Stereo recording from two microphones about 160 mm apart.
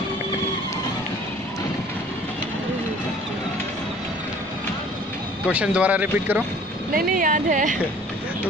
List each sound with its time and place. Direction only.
5.5 s speech: 10° right (ahead or behind)
6.9 s speech: 65° right (ahead or behind)